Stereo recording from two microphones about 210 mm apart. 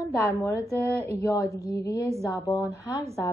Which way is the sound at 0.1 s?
15° left (ahead or behind).